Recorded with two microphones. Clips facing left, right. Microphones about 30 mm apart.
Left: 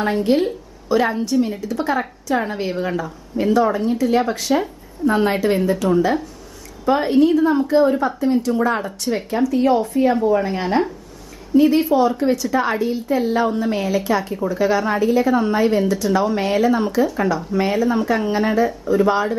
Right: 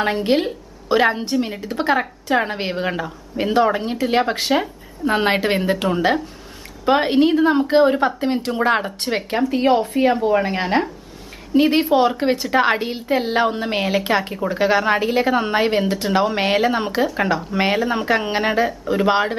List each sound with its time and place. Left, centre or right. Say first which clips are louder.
0.0 s a woman's voice: left 1 dB; right
11.5 s a woman's voice: left 1 dB; right